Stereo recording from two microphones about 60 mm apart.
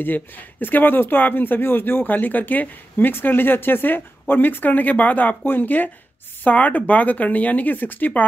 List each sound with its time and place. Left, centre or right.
0.0 s speech: left